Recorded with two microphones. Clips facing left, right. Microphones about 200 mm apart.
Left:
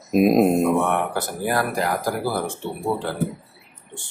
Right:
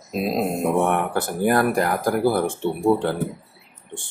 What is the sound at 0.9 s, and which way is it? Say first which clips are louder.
Speech: right 1 dB; 50° right (ahead or behind).